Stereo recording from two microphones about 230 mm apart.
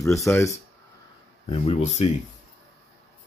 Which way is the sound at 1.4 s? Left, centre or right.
Left.